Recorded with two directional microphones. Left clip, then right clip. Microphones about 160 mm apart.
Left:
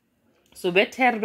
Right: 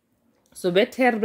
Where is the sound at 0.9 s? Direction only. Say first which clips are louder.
Even; 45° right (ahead or behind).